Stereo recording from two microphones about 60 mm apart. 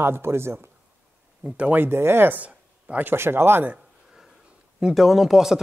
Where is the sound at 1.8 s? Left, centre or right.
Right.